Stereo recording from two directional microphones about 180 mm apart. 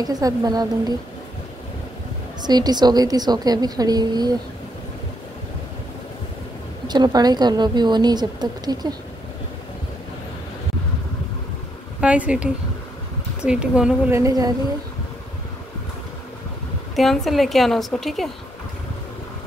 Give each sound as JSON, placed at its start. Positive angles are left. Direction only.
{"t": 0.0, "sound": "a woman's voice", "side_deg": -20}
{"t": 2.4, "sound": "a woman's voice", "side_deg": -25}
{"t": 6.9, "sound": "a woman's voice", "side_deg": -20}
{"t": 12.0, "sound": "speech", "side_deg": -5}
{"t": 16.9, "sound": "a woman's voice", "side_deg": 0}